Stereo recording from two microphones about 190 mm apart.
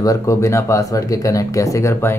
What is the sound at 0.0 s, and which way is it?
Speech, 15° left (ahead or behind).